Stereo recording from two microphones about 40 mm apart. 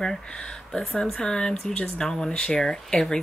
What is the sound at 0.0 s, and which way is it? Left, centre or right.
Speech, centre.